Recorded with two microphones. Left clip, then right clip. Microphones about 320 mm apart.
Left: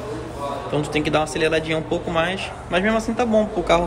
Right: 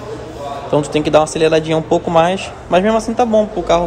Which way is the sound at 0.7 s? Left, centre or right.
Centre.